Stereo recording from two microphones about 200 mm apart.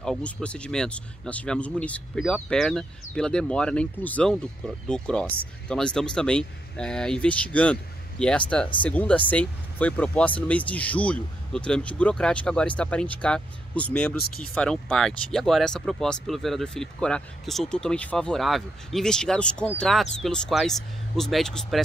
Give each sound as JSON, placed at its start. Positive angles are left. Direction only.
{"t": 0.0, "sound": "speech", "side_deg": 5}